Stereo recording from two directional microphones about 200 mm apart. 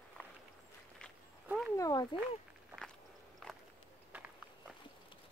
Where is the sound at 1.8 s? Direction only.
20° left (ahead or behind).